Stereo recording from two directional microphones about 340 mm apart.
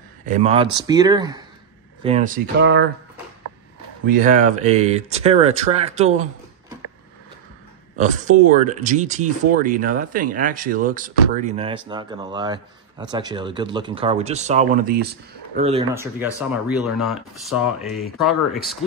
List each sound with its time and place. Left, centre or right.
0.2 s speech: right
2.0 s speech: right
4.1 s speech: right
8.0 s speech: right
15.9 s speech: centre